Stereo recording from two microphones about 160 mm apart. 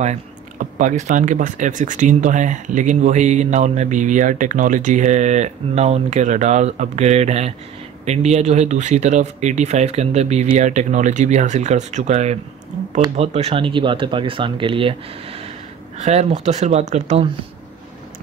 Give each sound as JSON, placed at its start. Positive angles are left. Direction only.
{"t": 0.0, "sound": "speech", "side_deg": -50}